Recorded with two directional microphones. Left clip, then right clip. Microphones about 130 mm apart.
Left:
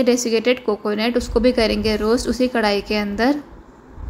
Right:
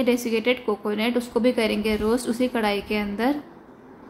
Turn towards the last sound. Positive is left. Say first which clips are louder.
# left 5 dB
turn(degrees=35)  # may be behind; listen again after turning